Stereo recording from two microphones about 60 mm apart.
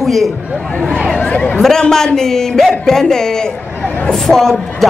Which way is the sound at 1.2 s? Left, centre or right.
Left.